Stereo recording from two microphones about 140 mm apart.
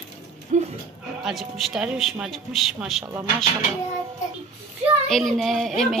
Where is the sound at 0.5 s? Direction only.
50° right (ahead or behind).